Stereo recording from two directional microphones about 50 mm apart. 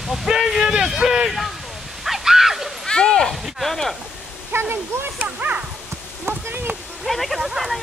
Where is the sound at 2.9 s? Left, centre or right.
Centre.